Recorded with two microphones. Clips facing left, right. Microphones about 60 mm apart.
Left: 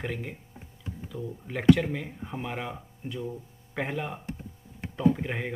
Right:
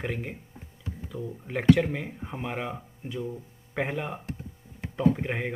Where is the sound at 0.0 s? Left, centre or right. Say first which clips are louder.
Right 1 dB; centre.